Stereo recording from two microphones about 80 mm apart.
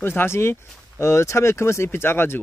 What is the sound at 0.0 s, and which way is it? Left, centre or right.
Speech, left.